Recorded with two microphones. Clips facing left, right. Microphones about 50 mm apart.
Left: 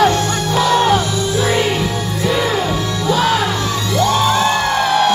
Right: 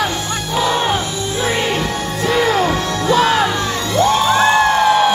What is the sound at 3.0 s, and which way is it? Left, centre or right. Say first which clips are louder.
Music: right 2 dB; right.